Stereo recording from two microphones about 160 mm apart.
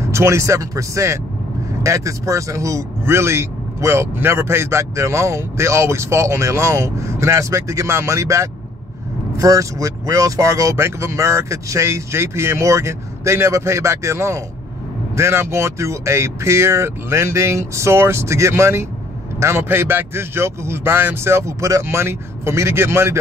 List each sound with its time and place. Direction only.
0.0 s a man's voice: 15° right (ahead or behind)